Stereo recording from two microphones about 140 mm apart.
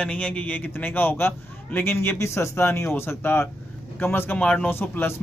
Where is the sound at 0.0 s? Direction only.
10° left (ahead or behind).